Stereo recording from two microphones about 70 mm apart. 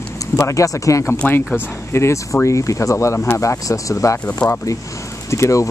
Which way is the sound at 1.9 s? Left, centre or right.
Left.